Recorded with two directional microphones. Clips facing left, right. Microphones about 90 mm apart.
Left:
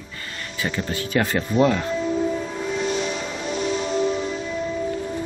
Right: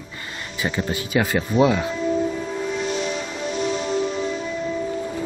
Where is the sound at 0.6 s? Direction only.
15° right (ahead or behind).